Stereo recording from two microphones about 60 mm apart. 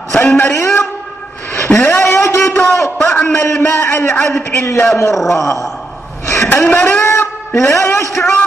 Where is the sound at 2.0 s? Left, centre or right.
Left.